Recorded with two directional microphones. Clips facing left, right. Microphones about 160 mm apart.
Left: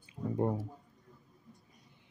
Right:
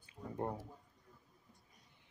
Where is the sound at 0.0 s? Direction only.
15° left (ahead or behind).